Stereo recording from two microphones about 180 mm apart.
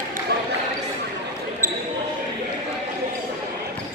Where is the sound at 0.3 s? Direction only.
65° right (ahead or behind).